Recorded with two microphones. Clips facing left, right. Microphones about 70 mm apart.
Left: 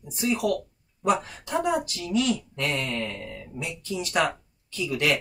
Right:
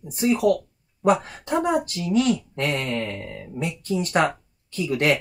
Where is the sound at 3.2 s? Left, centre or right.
Right.